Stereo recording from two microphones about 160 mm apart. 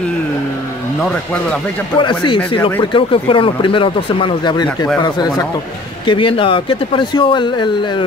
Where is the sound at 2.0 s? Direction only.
30° left (ahead or behind).